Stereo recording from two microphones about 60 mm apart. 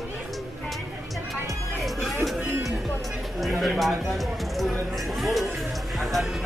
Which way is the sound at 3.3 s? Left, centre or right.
Centre.